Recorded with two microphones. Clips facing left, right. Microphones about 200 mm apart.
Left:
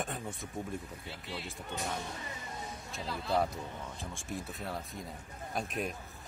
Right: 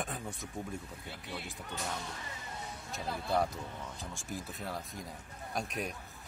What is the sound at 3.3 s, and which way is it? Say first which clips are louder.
Speech: left 1 dB; centre (ahead or behind).